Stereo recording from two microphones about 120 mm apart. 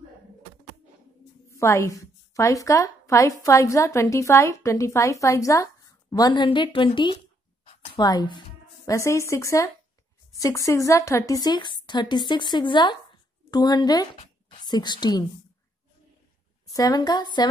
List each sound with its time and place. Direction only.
1.5 s a woman's voice: 25° left (ahead or behind)
16.6 s a woman's voice: 30° left (ahead or behind)